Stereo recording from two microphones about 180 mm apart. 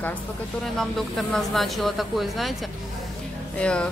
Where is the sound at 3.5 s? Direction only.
5° left (ahead or behind).